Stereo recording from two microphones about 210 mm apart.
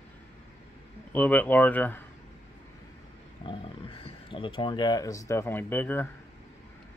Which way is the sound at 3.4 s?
25° left (ahead or behind).